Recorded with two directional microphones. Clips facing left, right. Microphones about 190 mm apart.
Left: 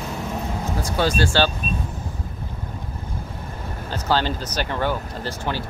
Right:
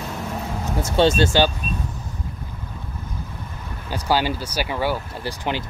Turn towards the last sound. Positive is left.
turn(degrees=-15)  # may be behind; listen again after turning